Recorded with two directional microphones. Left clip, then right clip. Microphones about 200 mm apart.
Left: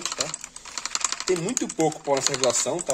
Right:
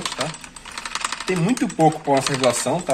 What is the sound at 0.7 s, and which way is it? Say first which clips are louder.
Typing: right 2 dB; 65° left (ahead or behind).